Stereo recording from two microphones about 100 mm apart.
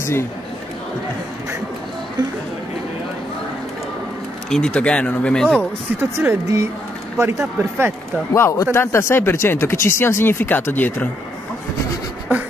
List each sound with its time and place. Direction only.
0.0 s speech: 25° left (ahead or behind)
4.5 s speech: 10° left (ahead or behind)
5.9 s speech: 25° right (ahead or behind)
8.3 s speech: 30° left (ahead or behind)